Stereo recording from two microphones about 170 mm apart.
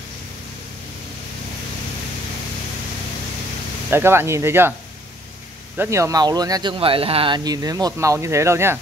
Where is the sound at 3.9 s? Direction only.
15° right (ahead or behind).